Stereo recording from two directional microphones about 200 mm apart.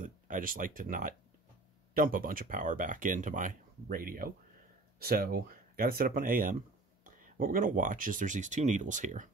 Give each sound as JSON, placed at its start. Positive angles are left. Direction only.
{"t": 0.0, "sound": "speech", "side_deg": -40}